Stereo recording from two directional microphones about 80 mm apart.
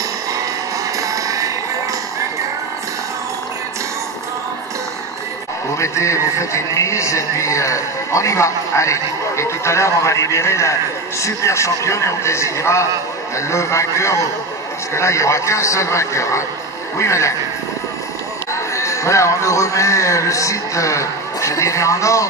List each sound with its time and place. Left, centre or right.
0.9 s music: right
5.8 s a man's voice: left
18.5 s speech: left